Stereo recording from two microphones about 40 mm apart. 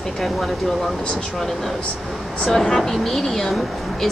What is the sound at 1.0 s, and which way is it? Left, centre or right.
Speech, left.